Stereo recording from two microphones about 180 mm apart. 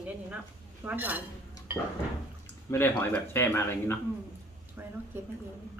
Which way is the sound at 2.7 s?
10° left (ahead or behind).